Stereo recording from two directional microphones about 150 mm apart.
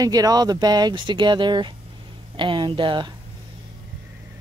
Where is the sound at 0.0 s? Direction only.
25° right (ahead or behind).